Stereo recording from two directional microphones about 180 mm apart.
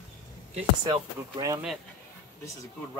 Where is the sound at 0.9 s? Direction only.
20° right (ahead or behind).